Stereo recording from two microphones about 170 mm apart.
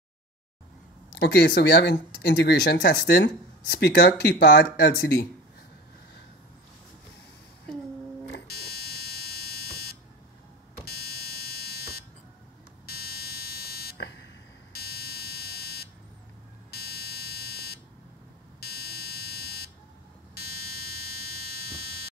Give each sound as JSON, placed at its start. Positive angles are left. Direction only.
{"t": 1.1, "sound": "speech", "side_deg": 75}
{"t": 8.3, "sound": "buzzer", "side_deg": 70}
{"t": 10.9, "sound": "fire alarm", "side_deg": 70}
{"t": 12.8, "sound": "buzzer", "side_deg": 65}